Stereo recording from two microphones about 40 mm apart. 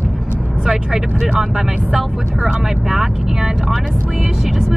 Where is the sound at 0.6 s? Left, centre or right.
Centre.